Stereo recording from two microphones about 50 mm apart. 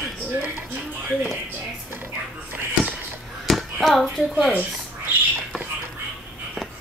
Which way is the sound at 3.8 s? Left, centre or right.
Centre.